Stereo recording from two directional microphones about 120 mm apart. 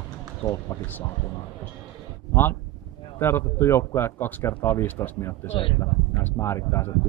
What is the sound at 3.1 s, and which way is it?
Speech, 20° left (ahead or behind).